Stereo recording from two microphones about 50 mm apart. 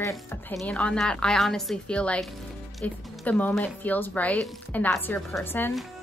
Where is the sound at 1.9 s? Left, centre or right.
Left.